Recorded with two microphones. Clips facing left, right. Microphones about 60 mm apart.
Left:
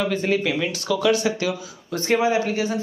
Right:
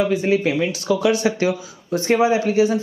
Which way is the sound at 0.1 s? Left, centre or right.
Centre.